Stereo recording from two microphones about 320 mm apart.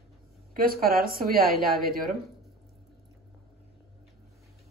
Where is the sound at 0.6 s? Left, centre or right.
Right.